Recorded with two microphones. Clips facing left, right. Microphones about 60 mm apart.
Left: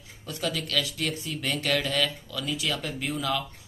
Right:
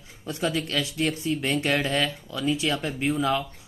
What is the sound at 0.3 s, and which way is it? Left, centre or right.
Speech, right.